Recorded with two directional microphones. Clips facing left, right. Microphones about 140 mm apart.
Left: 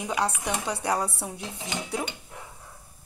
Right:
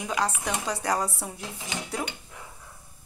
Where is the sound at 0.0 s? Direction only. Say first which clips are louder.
Even; 10° left (ahead or behind).